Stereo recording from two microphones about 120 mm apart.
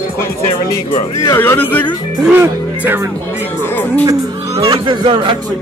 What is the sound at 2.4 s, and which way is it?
Speech, 20° right (ahead or behind).